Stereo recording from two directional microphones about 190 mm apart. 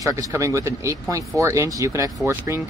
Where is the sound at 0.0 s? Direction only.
15° right (ahead or behind).